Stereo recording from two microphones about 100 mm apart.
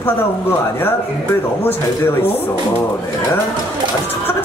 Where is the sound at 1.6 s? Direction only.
20° left (ahead or behind).